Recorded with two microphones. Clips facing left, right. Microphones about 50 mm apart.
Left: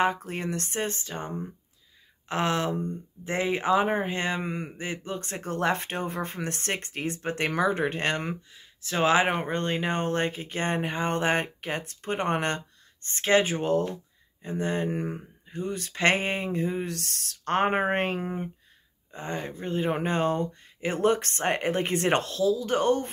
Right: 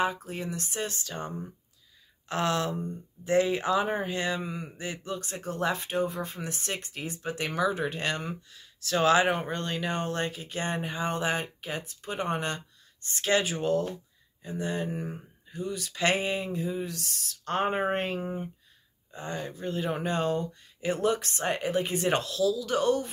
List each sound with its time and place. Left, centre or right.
0.0 s speech: left
2.7 s speech: left
3.3 s speech: left
4.4 s speech: left
4.7 s speech: left
8.5 s speech: left
19.1 s speech: left
22.4 s speech: left